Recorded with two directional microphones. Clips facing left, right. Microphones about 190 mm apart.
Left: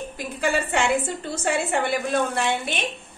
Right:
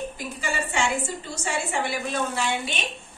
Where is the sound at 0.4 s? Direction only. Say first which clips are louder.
Left 5 dB; 60° left (ahead or behind).